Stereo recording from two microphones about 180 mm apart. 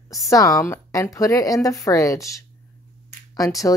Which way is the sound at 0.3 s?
20° left (ahead or behind).